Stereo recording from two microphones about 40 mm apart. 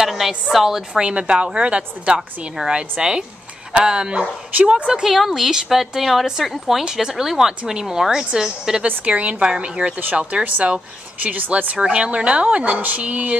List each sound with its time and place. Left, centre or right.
0.0 s a sound: centre
0.5 s speech: centre
1.0 s speech: right
5.0 s speech: centre
6.9 s speech: centre
8.8 s a woman's voice: right
11.2 s speech: right
11.5 s a woman's voice: right